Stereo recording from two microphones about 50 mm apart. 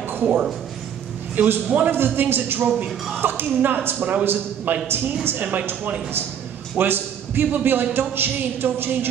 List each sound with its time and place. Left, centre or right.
0.2 s speech: right
1.9 s speech: right
5.2 s speech: right
6.8 s a sound: right
7.6 s speech: right